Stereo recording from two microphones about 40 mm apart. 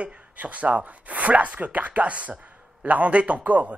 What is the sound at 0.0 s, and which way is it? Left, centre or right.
Speech, right.